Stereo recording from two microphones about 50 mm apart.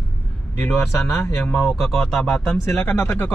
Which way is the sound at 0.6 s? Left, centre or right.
Centre.